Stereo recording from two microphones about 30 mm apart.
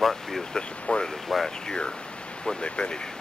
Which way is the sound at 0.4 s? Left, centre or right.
Centre.